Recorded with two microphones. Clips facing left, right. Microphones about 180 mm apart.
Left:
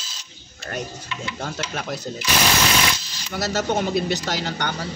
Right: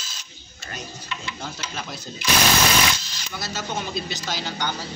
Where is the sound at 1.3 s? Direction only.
60° left (ahead or behind).